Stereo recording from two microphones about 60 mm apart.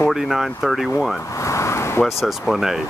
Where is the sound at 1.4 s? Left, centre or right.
Left.